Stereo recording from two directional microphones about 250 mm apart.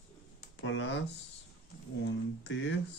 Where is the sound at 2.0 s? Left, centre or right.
Left.